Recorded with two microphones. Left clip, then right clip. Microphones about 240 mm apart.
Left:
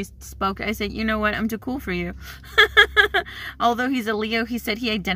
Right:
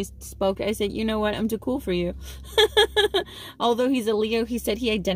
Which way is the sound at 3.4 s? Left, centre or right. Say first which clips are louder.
Right 1 dB; right.